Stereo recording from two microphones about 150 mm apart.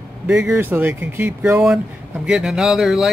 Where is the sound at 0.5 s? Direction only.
15° right (ahead or behind).